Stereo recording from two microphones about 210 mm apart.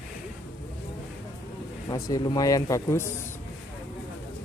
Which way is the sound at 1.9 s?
15° left (ahead or behind).